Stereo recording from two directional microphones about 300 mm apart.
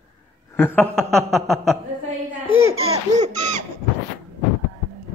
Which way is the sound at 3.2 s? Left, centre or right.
Right.